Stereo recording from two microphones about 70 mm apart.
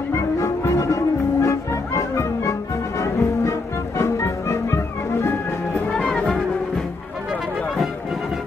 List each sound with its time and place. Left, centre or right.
0.1 s music: left
5.9 s music: centre